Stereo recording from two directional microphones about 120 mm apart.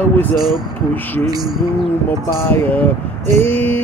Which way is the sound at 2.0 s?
15° left (ahead or behind).